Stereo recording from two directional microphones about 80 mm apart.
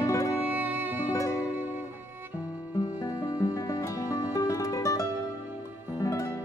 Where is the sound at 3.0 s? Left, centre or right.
Left.